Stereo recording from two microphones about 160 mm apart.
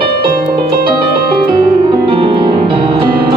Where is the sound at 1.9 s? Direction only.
35° right (ahead or behind).